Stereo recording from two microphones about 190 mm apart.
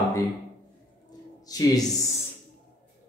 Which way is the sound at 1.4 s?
20° left (ahead or behind).